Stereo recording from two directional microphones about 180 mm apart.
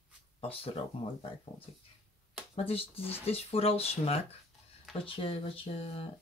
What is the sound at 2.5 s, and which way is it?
Speech, 30° left (ahead or behind).